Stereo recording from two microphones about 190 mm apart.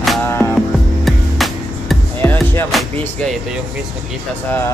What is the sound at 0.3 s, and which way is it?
Music, 10° left (ahead or behind).